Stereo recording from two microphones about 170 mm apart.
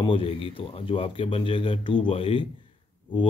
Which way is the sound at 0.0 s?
30° left (ahead or behind).